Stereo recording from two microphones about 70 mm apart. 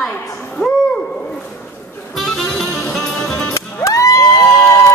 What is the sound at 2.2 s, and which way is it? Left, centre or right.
Music, centre.